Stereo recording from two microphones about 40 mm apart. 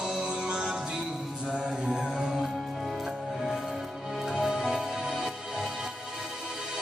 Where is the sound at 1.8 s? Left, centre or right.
Centre.